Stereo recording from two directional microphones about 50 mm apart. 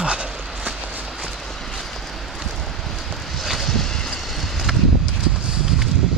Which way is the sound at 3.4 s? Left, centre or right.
Centre.